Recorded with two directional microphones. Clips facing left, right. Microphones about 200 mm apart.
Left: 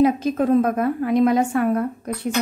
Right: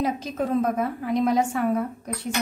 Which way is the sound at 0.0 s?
60° left (ahead or behind).